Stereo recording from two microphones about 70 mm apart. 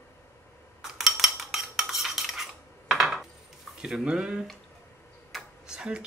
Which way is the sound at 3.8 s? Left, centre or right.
Centre.